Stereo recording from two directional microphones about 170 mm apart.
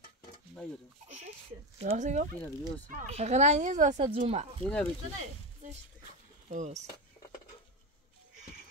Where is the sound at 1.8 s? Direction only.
40° right (ahead or behind).